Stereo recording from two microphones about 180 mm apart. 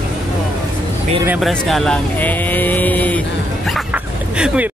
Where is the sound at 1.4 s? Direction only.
Centre (ahead or behind).